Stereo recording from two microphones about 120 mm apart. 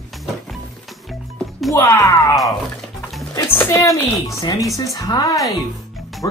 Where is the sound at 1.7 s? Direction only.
25° left (ahead or behind).